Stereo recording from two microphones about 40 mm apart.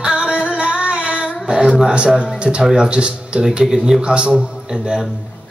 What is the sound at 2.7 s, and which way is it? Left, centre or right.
Speech, right.